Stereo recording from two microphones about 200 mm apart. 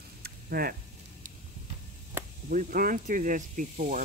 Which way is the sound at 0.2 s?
50° right (ahead or behind).